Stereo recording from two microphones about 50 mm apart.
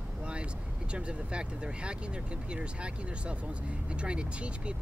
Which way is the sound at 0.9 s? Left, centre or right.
Right.